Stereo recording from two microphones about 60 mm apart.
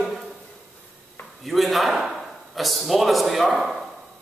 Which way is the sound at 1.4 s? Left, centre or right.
Centre.